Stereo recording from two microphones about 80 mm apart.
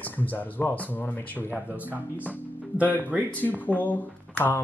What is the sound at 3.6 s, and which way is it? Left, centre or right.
Speech, left.